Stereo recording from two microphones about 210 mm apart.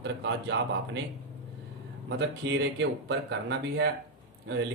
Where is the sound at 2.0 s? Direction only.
55° right (ahead or behind).